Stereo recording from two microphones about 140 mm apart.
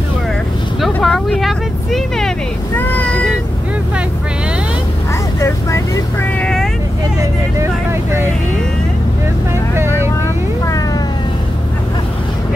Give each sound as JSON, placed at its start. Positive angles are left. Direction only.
{"t": 1.0, "sound": "vehicle", "side_deg": 5}
{"t": 2.9, "sound": "meow", "side_deg": 10}
{"t": 6.4, "sound": "vehicle", "side_deg": 5}
{"t": 7.5, "sound": "vehicle", "side_deg": -20}
{"t": 9.8, "sound": "vehicle", "side_deg": -15}